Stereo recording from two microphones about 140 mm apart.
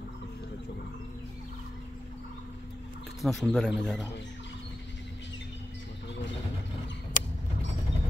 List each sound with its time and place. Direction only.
3.2 s speech: centre (ahead or behind)
7.2 s vehicle: 75° left (ahead or behind)